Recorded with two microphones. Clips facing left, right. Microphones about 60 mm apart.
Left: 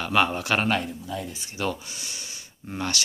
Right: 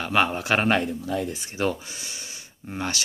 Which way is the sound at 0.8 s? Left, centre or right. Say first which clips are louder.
Right 5 dB; right.